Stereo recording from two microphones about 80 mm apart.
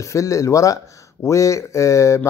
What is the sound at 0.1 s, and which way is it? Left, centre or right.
Speech, left.